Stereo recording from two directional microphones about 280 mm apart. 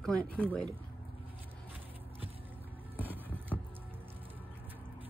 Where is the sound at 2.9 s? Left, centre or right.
Centre.